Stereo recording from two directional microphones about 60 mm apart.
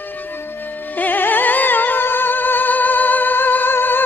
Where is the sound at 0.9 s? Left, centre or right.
Left.